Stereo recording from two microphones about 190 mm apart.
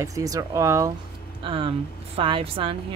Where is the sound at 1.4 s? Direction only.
25° right (ahead or behind).